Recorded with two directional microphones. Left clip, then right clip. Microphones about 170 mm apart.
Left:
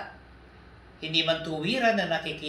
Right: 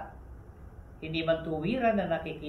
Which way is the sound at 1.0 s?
15° left (ahead or behind).